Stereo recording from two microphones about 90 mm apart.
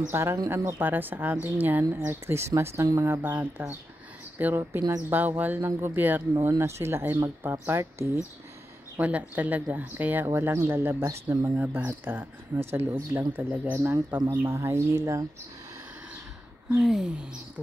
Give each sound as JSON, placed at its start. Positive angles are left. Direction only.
{"t": 0.1, "sound": "speech", "side_deg": -30}
{"t": 7.8, "sound": "speech", "side_deg": -35}
{"t": 8.9, "sound": "speech", "side_deg": -20}
{"t": 16.7, "sound": "speech", "side_deg": -5}